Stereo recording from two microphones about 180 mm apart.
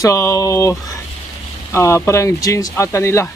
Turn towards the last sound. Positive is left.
turn(degrees=15)  # may be behind; listen again after turning